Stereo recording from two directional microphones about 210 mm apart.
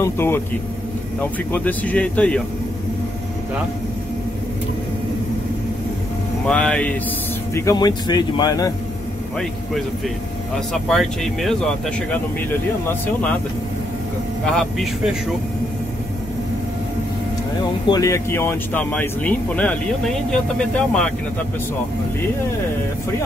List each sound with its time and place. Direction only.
0.0 s speech: 10° left (ahead or behind)
6.4 s speech: 5° left (ahead or behind)
7.5 s speech: 15° left (ahead or behind)
10.5 s speech: centre (ahead or behind)
14.4 s speech: centre (ahead or behind)
17.8 s speech: 15° left (ahead or behind)